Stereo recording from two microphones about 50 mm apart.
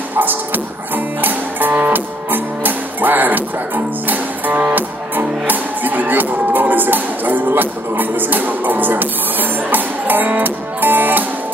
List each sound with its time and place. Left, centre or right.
0.1 s music: right